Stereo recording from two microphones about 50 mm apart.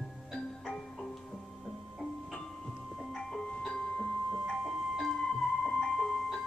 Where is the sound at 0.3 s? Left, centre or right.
Centre.